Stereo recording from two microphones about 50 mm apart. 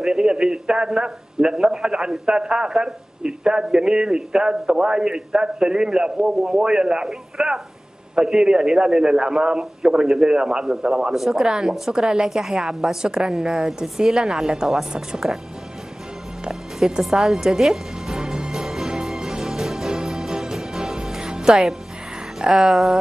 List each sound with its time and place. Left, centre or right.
0.0 s a man's voice: centre
7.1 s radio: centre
8.4 s a man's voice: centre
16.4 s music: centre
22.4 s a man's voice: centre